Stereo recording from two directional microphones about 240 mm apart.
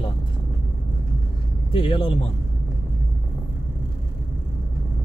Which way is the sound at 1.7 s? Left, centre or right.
Left.